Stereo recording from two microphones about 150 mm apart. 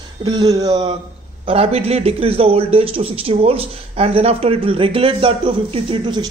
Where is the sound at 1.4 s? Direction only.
40° right (ahead or behind).